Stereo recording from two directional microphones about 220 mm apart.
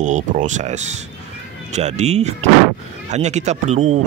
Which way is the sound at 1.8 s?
30° right (ahead or behind).